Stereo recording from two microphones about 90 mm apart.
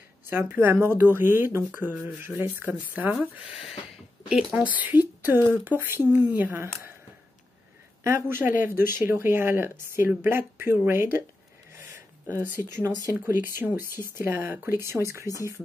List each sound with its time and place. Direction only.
0.3 s speech: 25° right (ahead or behind)
3.3 s speech: 5° right (ahead or behind)
4.6 s speech: 20° right (ahead or behind)
8.0 s speech: 25° right (ahead or behind)
13.2 s speech: 20° right (ahead or behind)